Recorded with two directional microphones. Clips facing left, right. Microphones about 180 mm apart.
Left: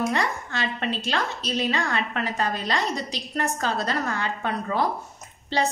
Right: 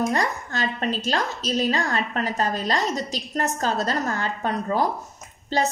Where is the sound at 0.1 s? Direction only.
40° right (ahead or behind).